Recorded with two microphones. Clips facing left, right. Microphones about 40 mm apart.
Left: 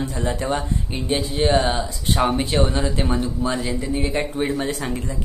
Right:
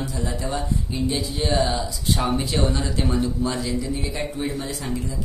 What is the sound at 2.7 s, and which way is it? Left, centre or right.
Speech, left.